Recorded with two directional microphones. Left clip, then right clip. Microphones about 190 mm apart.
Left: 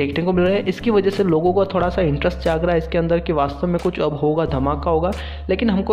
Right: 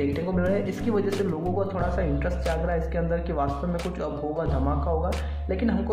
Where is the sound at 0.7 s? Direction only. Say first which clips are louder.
Left 8 dB; 30° left (ahead or behind).